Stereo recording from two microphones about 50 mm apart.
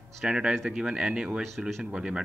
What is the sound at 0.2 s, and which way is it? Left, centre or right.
Speech, centre.